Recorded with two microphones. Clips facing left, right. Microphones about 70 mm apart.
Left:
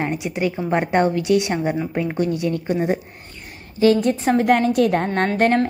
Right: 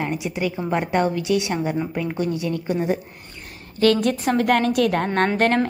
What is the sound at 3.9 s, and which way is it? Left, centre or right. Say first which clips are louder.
Speech: left 3 dB; right.